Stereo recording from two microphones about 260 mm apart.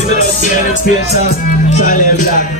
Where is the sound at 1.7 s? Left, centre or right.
Left.